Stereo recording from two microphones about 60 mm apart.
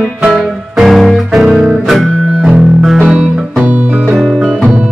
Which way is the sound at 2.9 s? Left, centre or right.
Right.